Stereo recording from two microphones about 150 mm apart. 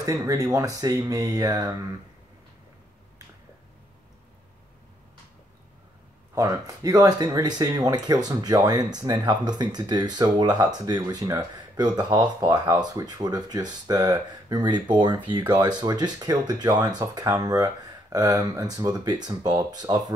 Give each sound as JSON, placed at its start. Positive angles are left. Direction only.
{"t": 0.0, "sound": "speech", "side_deg": -20}
{"t": 6.3, "sound": "speech", "side_deg": -20}